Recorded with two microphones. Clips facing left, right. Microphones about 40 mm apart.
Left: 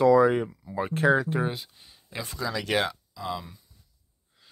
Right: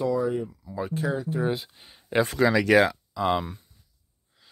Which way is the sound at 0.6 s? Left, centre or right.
Left.